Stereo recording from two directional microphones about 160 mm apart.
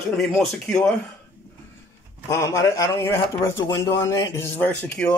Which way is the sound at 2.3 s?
15° left (ahead or behind).